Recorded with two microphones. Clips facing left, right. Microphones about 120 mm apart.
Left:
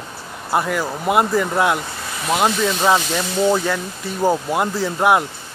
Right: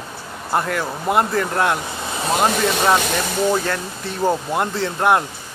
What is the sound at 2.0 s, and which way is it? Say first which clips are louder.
Vehicle: right 3 dB; 25° right (ahead or behind).